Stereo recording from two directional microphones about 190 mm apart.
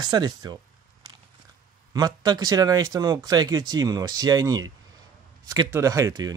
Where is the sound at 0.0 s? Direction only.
20° right (ahead or behind).